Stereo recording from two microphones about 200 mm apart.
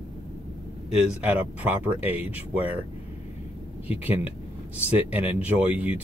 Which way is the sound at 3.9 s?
10° right (ahead or behind).